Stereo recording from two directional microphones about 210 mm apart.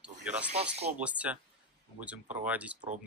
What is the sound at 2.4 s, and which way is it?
Speech, 5° right (ahead or behind).